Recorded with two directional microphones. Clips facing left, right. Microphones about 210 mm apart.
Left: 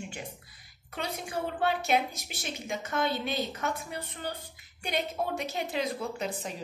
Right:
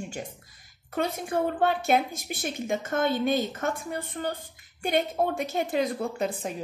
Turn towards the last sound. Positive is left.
turn(degrees=-50)  # may be behind; listen again after turning